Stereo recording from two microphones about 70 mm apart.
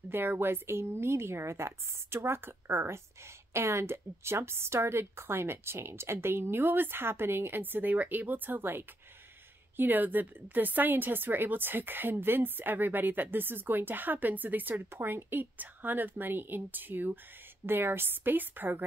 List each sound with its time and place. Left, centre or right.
0.1 s a woman's voice: right